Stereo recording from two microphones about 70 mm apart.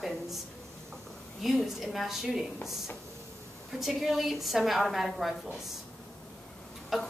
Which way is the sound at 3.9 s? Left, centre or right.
Centre.